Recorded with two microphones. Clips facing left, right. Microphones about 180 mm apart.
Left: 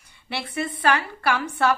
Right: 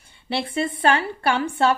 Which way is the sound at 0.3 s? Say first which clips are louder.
Right 4 dB; 30° right (ahead or behind).